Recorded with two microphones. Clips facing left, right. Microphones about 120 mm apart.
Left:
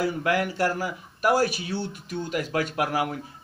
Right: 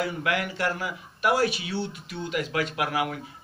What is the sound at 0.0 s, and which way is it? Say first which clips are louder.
A man's voice: left 3 dB; 40° left (ahead or behind).